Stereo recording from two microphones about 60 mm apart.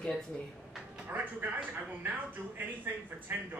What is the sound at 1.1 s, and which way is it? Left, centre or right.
A woman's voice, right.